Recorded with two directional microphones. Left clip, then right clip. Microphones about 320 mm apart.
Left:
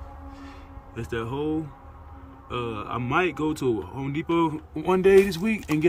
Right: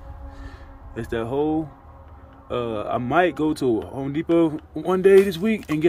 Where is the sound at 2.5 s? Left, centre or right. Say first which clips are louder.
Right 6 dB; centre.